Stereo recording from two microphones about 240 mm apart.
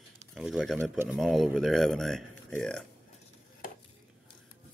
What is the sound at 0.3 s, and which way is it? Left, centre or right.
Speech, centre.